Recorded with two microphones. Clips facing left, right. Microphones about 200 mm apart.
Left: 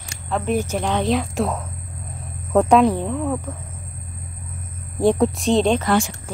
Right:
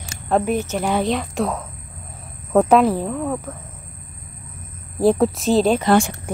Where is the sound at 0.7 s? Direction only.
5° right (ahead or behind).